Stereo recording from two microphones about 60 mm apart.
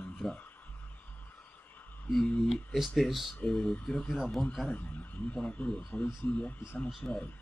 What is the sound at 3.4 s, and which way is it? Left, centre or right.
Speech, centre.